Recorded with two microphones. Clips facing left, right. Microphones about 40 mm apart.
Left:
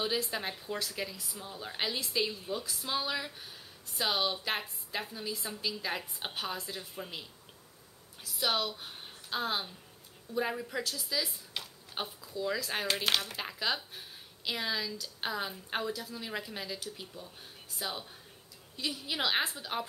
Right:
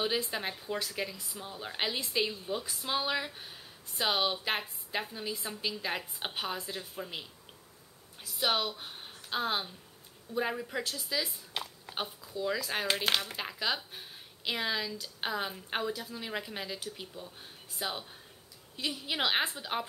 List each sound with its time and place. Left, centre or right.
0.0 s a woman's voice: centre
8.2 s a woman's voice: centre